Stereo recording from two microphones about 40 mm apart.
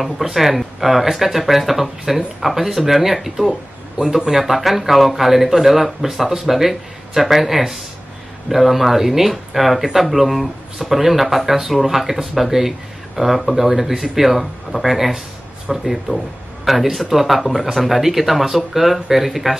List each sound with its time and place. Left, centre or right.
0.0 s speech: centre
4.0 s a man's voice: right
4.3 s speech: centre